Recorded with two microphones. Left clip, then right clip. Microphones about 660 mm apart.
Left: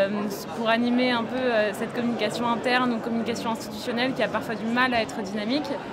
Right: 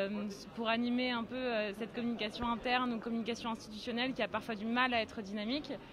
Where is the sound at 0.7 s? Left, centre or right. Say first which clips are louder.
Left 12 dB; right.